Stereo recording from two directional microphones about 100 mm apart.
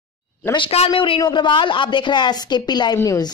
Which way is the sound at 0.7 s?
85° left.